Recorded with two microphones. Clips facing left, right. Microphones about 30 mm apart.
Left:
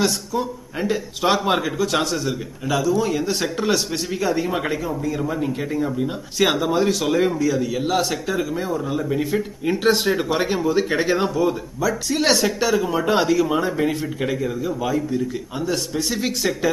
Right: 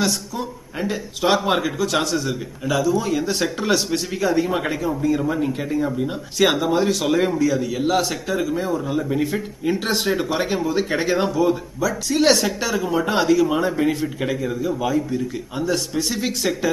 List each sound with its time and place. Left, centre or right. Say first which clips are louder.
0.0 s speech: left 2 dB; centre